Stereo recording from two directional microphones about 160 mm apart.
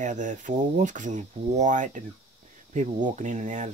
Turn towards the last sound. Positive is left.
turn(degrees=-50)  # may be behind; listen again after turning